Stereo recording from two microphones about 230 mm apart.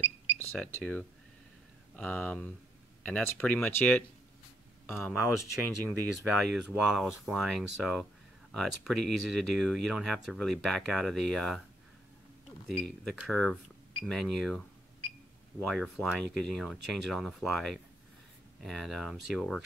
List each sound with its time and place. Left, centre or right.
0.4 s cash register: centre
2.0 s speech: centre
5.3 s speech: right
6.4 s speech: centre
12.6 s speech: centre
15.6 s speech: centre